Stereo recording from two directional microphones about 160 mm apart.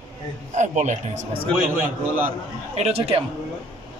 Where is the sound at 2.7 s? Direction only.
40° right (ahead or behind).